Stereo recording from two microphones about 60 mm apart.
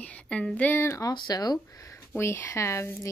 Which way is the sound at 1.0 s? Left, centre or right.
Left.